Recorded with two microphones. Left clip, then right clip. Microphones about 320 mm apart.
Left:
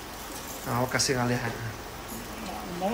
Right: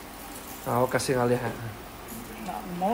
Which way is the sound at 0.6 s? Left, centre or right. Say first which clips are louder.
Right 2 dB; centre.